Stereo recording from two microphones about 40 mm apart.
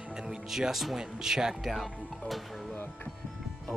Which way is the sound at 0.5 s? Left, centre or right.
Centre.